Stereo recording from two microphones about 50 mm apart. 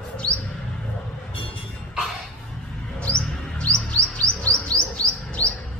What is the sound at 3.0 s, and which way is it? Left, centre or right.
Chirp, left.